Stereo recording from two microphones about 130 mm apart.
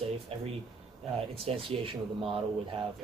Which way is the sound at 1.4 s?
45° right (ahead or behind).